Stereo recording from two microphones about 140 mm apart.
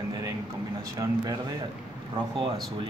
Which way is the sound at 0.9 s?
25° right (ahead or behind).